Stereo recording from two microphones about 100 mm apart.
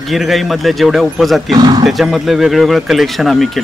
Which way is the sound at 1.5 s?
45° right (ahead or behind).